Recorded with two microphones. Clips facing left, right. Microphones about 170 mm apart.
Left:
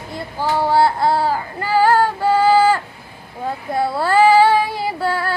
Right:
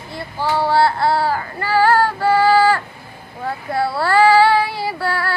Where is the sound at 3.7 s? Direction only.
20° left (ahead or behind).